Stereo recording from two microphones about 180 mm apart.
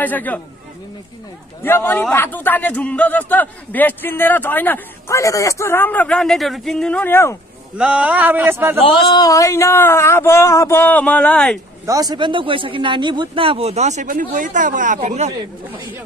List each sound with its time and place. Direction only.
0.0 s a man's voice: 10° left (ahead or behind)
1.6 s a man's voice: 10° left (ahead or behind)
7.7 s speech: 5° right (ahead or behind)
8.8 s a man's voice: 25° left (ahead or behind); by 11.6 s 5° left (ahead or behind)
11.8 s a man's voice: 20° right (ahead or behind); by 15.8 s 40° right (ahead or behind)